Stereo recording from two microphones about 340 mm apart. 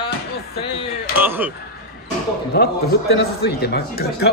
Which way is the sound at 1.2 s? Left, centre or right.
Centre.